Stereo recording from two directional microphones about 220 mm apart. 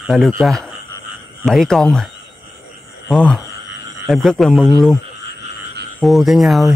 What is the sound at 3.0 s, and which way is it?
Speech, centre (ahead or behind).